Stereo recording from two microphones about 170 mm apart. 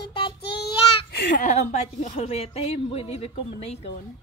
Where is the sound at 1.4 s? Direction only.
45° left (ahead or behind).